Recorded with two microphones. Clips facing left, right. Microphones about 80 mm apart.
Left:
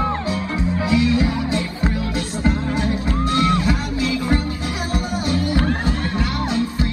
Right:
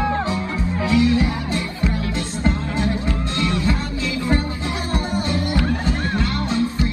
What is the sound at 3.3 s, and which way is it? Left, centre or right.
Music, left.